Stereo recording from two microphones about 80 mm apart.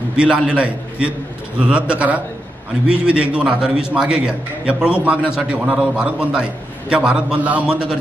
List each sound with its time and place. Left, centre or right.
0.1 s a man's voice: centre